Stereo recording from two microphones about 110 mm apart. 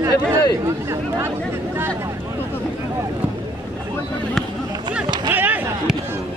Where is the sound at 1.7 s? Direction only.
20° right (ahead or behind).